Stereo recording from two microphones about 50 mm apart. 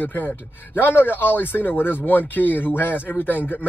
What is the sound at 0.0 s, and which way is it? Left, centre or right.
A man's voice, left.